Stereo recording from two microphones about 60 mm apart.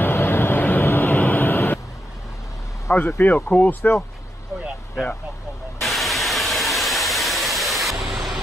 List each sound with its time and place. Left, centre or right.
0.0 s vehicle: left
2.9 s speech: left
3.3 s speech: left
5.8 s a sound: centre